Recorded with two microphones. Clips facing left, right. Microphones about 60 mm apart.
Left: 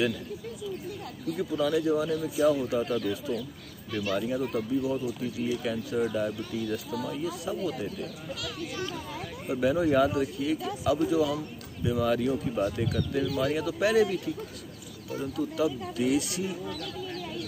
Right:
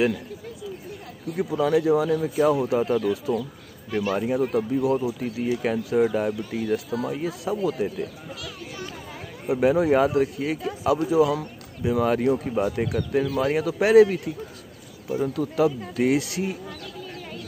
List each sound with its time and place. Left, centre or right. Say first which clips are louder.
1.3 s speech: right 5 dB; right
2.2 s speech: right 3 dB; right
2.5 s speech: right 6 dB; right
15.3 s speech: right 4 dB; right